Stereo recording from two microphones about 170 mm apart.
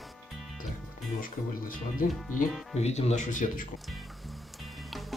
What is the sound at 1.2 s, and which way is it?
Speech, 55° left (ahead or behind).